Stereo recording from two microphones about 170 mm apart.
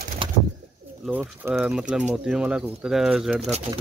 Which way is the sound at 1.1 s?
10° right (ahead or behind).